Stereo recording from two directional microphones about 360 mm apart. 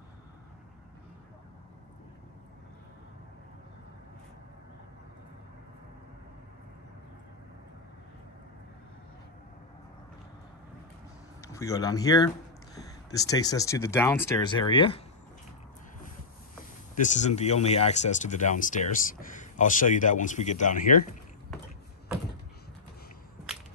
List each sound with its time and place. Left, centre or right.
11.4 s speech: centre
17.0 s speech: centre